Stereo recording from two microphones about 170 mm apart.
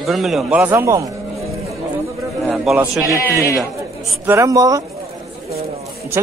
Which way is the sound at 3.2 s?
15° left (ahead or behind).